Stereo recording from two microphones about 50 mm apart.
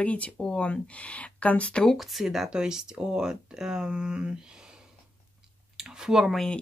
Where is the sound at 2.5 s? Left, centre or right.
Centre.